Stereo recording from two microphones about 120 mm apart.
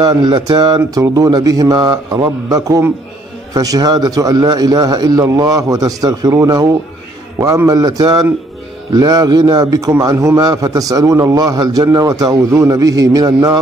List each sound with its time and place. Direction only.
0.0 s a man's voice: 35° right (ahead or behind)